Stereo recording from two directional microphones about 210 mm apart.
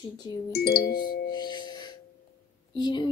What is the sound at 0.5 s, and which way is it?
Music, 50° left (ahead or behind).